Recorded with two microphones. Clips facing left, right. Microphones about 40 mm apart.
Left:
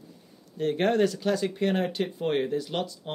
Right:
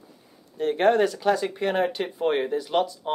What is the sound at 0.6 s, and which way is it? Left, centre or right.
Speech, centre.